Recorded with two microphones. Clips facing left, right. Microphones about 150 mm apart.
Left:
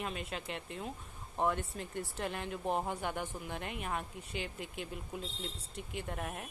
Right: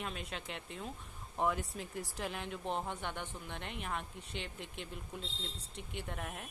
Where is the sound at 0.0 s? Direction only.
Centre (ahead or behind).